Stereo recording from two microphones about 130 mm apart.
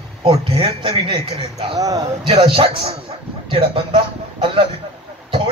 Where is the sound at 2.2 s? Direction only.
45° right (ahead or behind).